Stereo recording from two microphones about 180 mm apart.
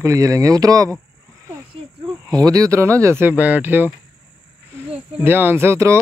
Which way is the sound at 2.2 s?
20° right (ahead or behind).